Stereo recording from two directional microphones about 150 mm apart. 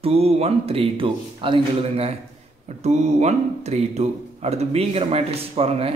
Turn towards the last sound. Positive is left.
turn(degrees=-40)  # may be behind; listen again after turning